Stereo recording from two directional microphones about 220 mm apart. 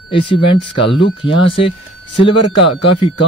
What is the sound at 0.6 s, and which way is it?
Speech, 55° left (ahead or behind).